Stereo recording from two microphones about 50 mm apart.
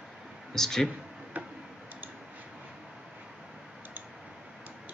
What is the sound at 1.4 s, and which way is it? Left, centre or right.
Tick-tock, right.